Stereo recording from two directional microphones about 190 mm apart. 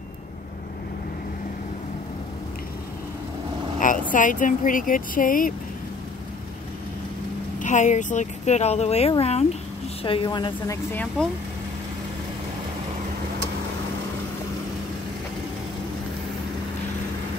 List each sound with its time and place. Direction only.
4.1 s speech: 45° left (ahead or behind)
7.5 s a woman's voice: 40° left (ahead or behind); by 10.8 s 25° left (ahead or behind)
10.9 s speech: 10° left (ahead or behind)